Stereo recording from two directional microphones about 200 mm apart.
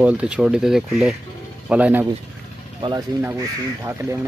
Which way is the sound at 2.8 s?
25° right (ahead or behind).